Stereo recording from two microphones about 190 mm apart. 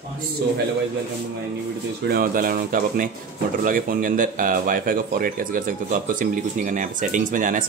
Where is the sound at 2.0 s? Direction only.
50° right (ahead or behind).